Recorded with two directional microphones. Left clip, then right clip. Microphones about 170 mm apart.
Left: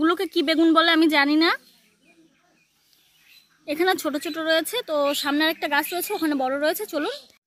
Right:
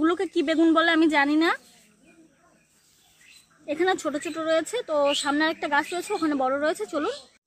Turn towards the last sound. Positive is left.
turn(degrees=25)  # may be behind; listen again after turning